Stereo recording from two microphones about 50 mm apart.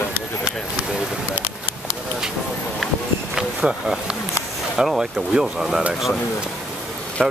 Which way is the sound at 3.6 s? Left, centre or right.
Centre.